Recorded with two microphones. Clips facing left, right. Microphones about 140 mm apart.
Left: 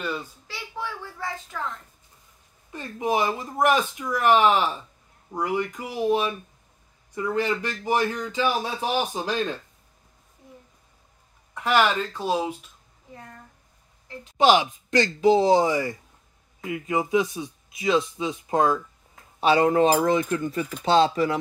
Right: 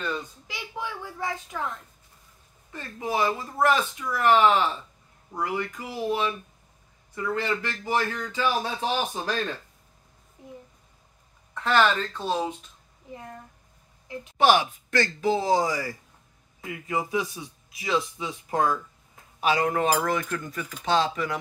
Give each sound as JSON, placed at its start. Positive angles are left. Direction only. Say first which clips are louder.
{"t": 0.5, "sound": "a sound", "louder": "left 1 dB", "side_deg": -15}
{"t": 2.7, "sound": "speech", "louder": "left 4 dB", "side_deg": 20}
{"t": 11.5, "sound": "speech", "louder": "left 1 dB", "side_deg": 10}
{"t": 14.4, "sound": "speech", "louder": "left 2 dB", "side_deg": 15}